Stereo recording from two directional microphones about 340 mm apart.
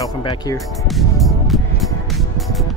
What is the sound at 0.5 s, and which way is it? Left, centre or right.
Speech, centre.